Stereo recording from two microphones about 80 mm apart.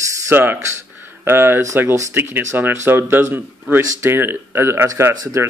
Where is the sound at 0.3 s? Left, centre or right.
Right.